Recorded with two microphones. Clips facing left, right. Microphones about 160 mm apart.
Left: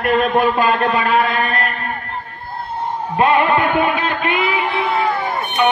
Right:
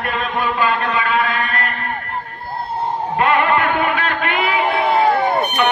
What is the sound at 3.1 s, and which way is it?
Music, 20° left (ahead or behind).